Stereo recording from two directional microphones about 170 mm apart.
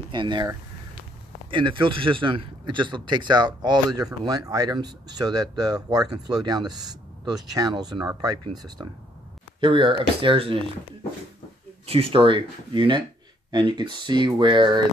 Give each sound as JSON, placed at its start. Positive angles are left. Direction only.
{"t": 0.1, "sound": "speech", "side_deg": -25}
{"t": 11.8, "sound": "speech", "side_deg": -35}